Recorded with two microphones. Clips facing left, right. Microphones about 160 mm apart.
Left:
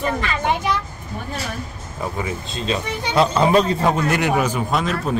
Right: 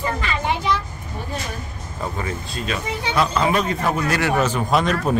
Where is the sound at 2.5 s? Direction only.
25° left (ahead or behind).